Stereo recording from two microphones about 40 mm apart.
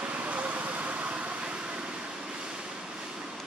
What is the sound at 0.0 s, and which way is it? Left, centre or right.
Vehicle, right.